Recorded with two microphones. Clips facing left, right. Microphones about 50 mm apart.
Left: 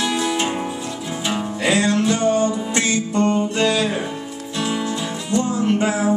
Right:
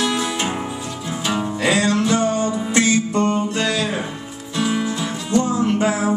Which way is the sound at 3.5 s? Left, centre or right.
Left.